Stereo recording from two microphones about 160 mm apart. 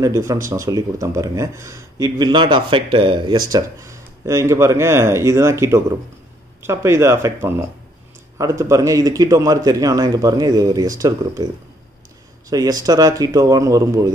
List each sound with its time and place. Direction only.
0.0 s speech: 20° right (ahead or behind)
12.4 s speech: 25° right (ahead or behind)